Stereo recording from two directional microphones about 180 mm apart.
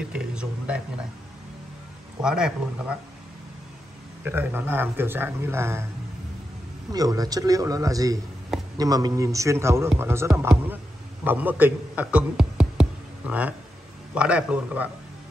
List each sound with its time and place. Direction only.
0.1 s speech: 5° right (ahead or behind)
2.2 s speech: 5° right (ahead or behind)
4.2 s speech: 10° right (ahead or behind)
6.9 s a man's voice: 20° right (ahead or behind)